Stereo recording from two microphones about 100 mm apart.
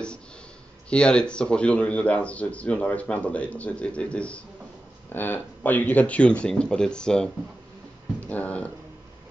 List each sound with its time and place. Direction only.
0.8 s speech: 10° left (ahead or behind)